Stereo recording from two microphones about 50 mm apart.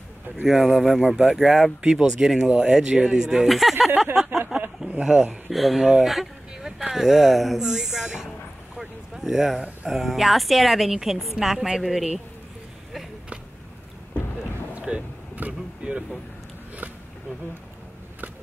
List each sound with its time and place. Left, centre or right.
0.5 s speech: centre
5.5 s speech: centre
6.0 s a sound: centre
6.8 s speech: centre
7.6 s speech: centre
8.7 s a sound: centre
9.8 s speech: centre
14.7 s vehicle: right
15.8 s a sound: right